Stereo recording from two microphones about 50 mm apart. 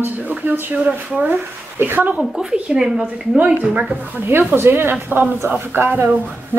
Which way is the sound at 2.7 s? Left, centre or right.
Centre.